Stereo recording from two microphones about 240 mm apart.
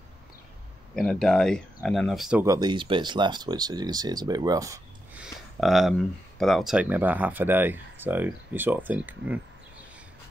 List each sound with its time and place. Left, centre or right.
0.9 s speech: centre
2.4 s speech: centre
5.2 s speech: centre